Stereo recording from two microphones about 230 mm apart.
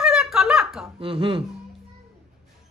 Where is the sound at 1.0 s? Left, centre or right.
Right.